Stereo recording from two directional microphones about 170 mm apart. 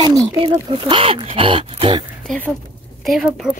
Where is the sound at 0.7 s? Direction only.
30° right (ahead or behind).